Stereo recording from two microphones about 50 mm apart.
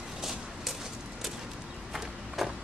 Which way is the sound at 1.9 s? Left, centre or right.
Centre.